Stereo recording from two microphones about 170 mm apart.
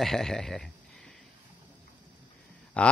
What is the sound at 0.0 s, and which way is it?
Speech, centre (ahead or behind).